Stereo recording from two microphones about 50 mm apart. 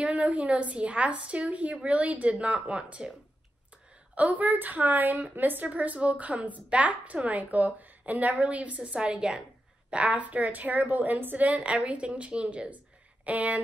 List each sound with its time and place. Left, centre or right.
0.0 s a woman's voice: right
4.1 s a woman's voice: right
11.4 s a woman's voice: right